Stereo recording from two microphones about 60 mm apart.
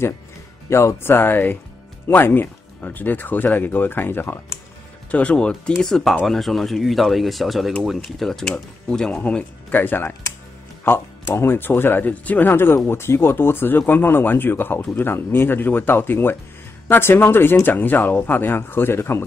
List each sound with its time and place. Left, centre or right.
0.7 s speech: left
5.1 s speech: left
9.2 s speech: left